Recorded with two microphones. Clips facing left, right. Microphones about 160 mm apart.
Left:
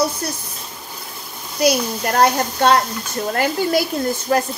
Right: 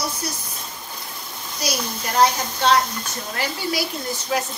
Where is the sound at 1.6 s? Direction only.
60° left (ahead or behind).